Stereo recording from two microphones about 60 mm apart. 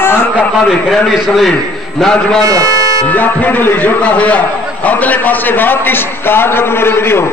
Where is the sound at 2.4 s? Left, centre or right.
Right.